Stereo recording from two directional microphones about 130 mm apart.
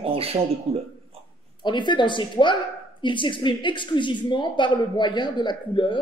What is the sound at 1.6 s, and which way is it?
A woman's voice, 35° left (ahead or behind).